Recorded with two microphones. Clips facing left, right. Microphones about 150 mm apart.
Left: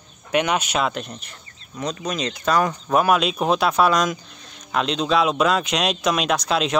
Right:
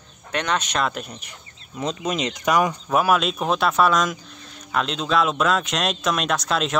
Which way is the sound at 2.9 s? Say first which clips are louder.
Left 3 dB; centre (ahead or behind).